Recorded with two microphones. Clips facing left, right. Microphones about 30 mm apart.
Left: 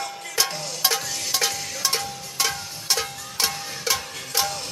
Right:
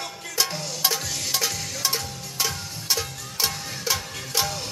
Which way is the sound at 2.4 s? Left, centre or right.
Centre.